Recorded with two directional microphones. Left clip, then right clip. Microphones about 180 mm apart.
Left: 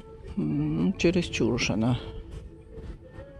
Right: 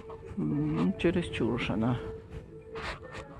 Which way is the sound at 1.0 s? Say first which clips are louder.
Left 7 dB; 30° left (ahead or behind).